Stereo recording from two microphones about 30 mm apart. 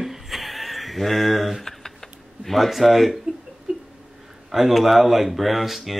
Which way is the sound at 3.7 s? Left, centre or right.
Right.